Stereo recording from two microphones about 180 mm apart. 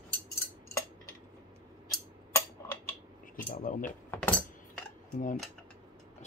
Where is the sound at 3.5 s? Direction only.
50° left (ahead or behind).